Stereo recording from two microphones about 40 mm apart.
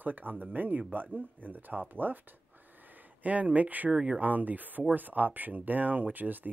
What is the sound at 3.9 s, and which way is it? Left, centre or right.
Speech, right.